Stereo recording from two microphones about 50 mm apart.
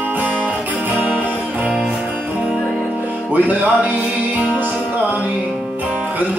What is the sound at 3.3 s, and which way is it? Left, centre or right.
Music, right.